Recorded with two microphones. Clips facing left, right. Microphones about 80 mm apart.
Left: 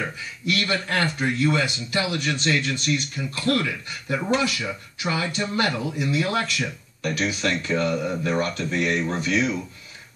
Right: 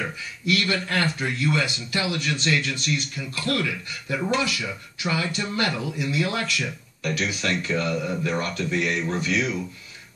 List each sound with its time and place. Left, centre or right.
0.5 s speech: left